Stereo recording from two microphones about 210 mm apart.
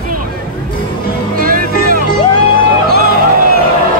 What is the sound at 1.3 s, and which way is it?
Music, 45° right (ahead or behind).